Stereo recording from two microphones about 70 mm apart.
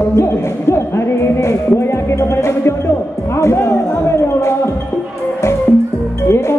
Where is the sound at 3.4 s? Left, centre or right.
Left.